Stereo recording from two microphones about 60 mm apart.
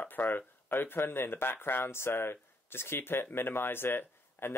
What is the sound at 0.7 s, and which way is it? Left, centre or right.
Speech, left.